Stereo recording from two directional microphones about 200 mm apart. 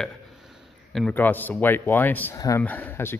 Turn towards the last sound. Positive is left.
turn(degrees=10)  # may be behind; listen again after turning